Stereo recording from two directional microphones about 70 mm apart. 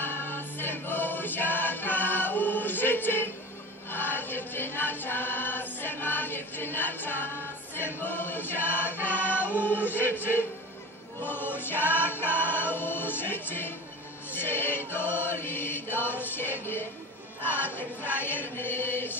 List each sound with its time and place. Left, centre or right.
0.0 s choir: left
3.9 s music: left
7.7 s choir: left
9.6 s chant: left
11.2 s choir: left
14.3 s chant: left
17.4 s a sound: left
17.7 s chant: left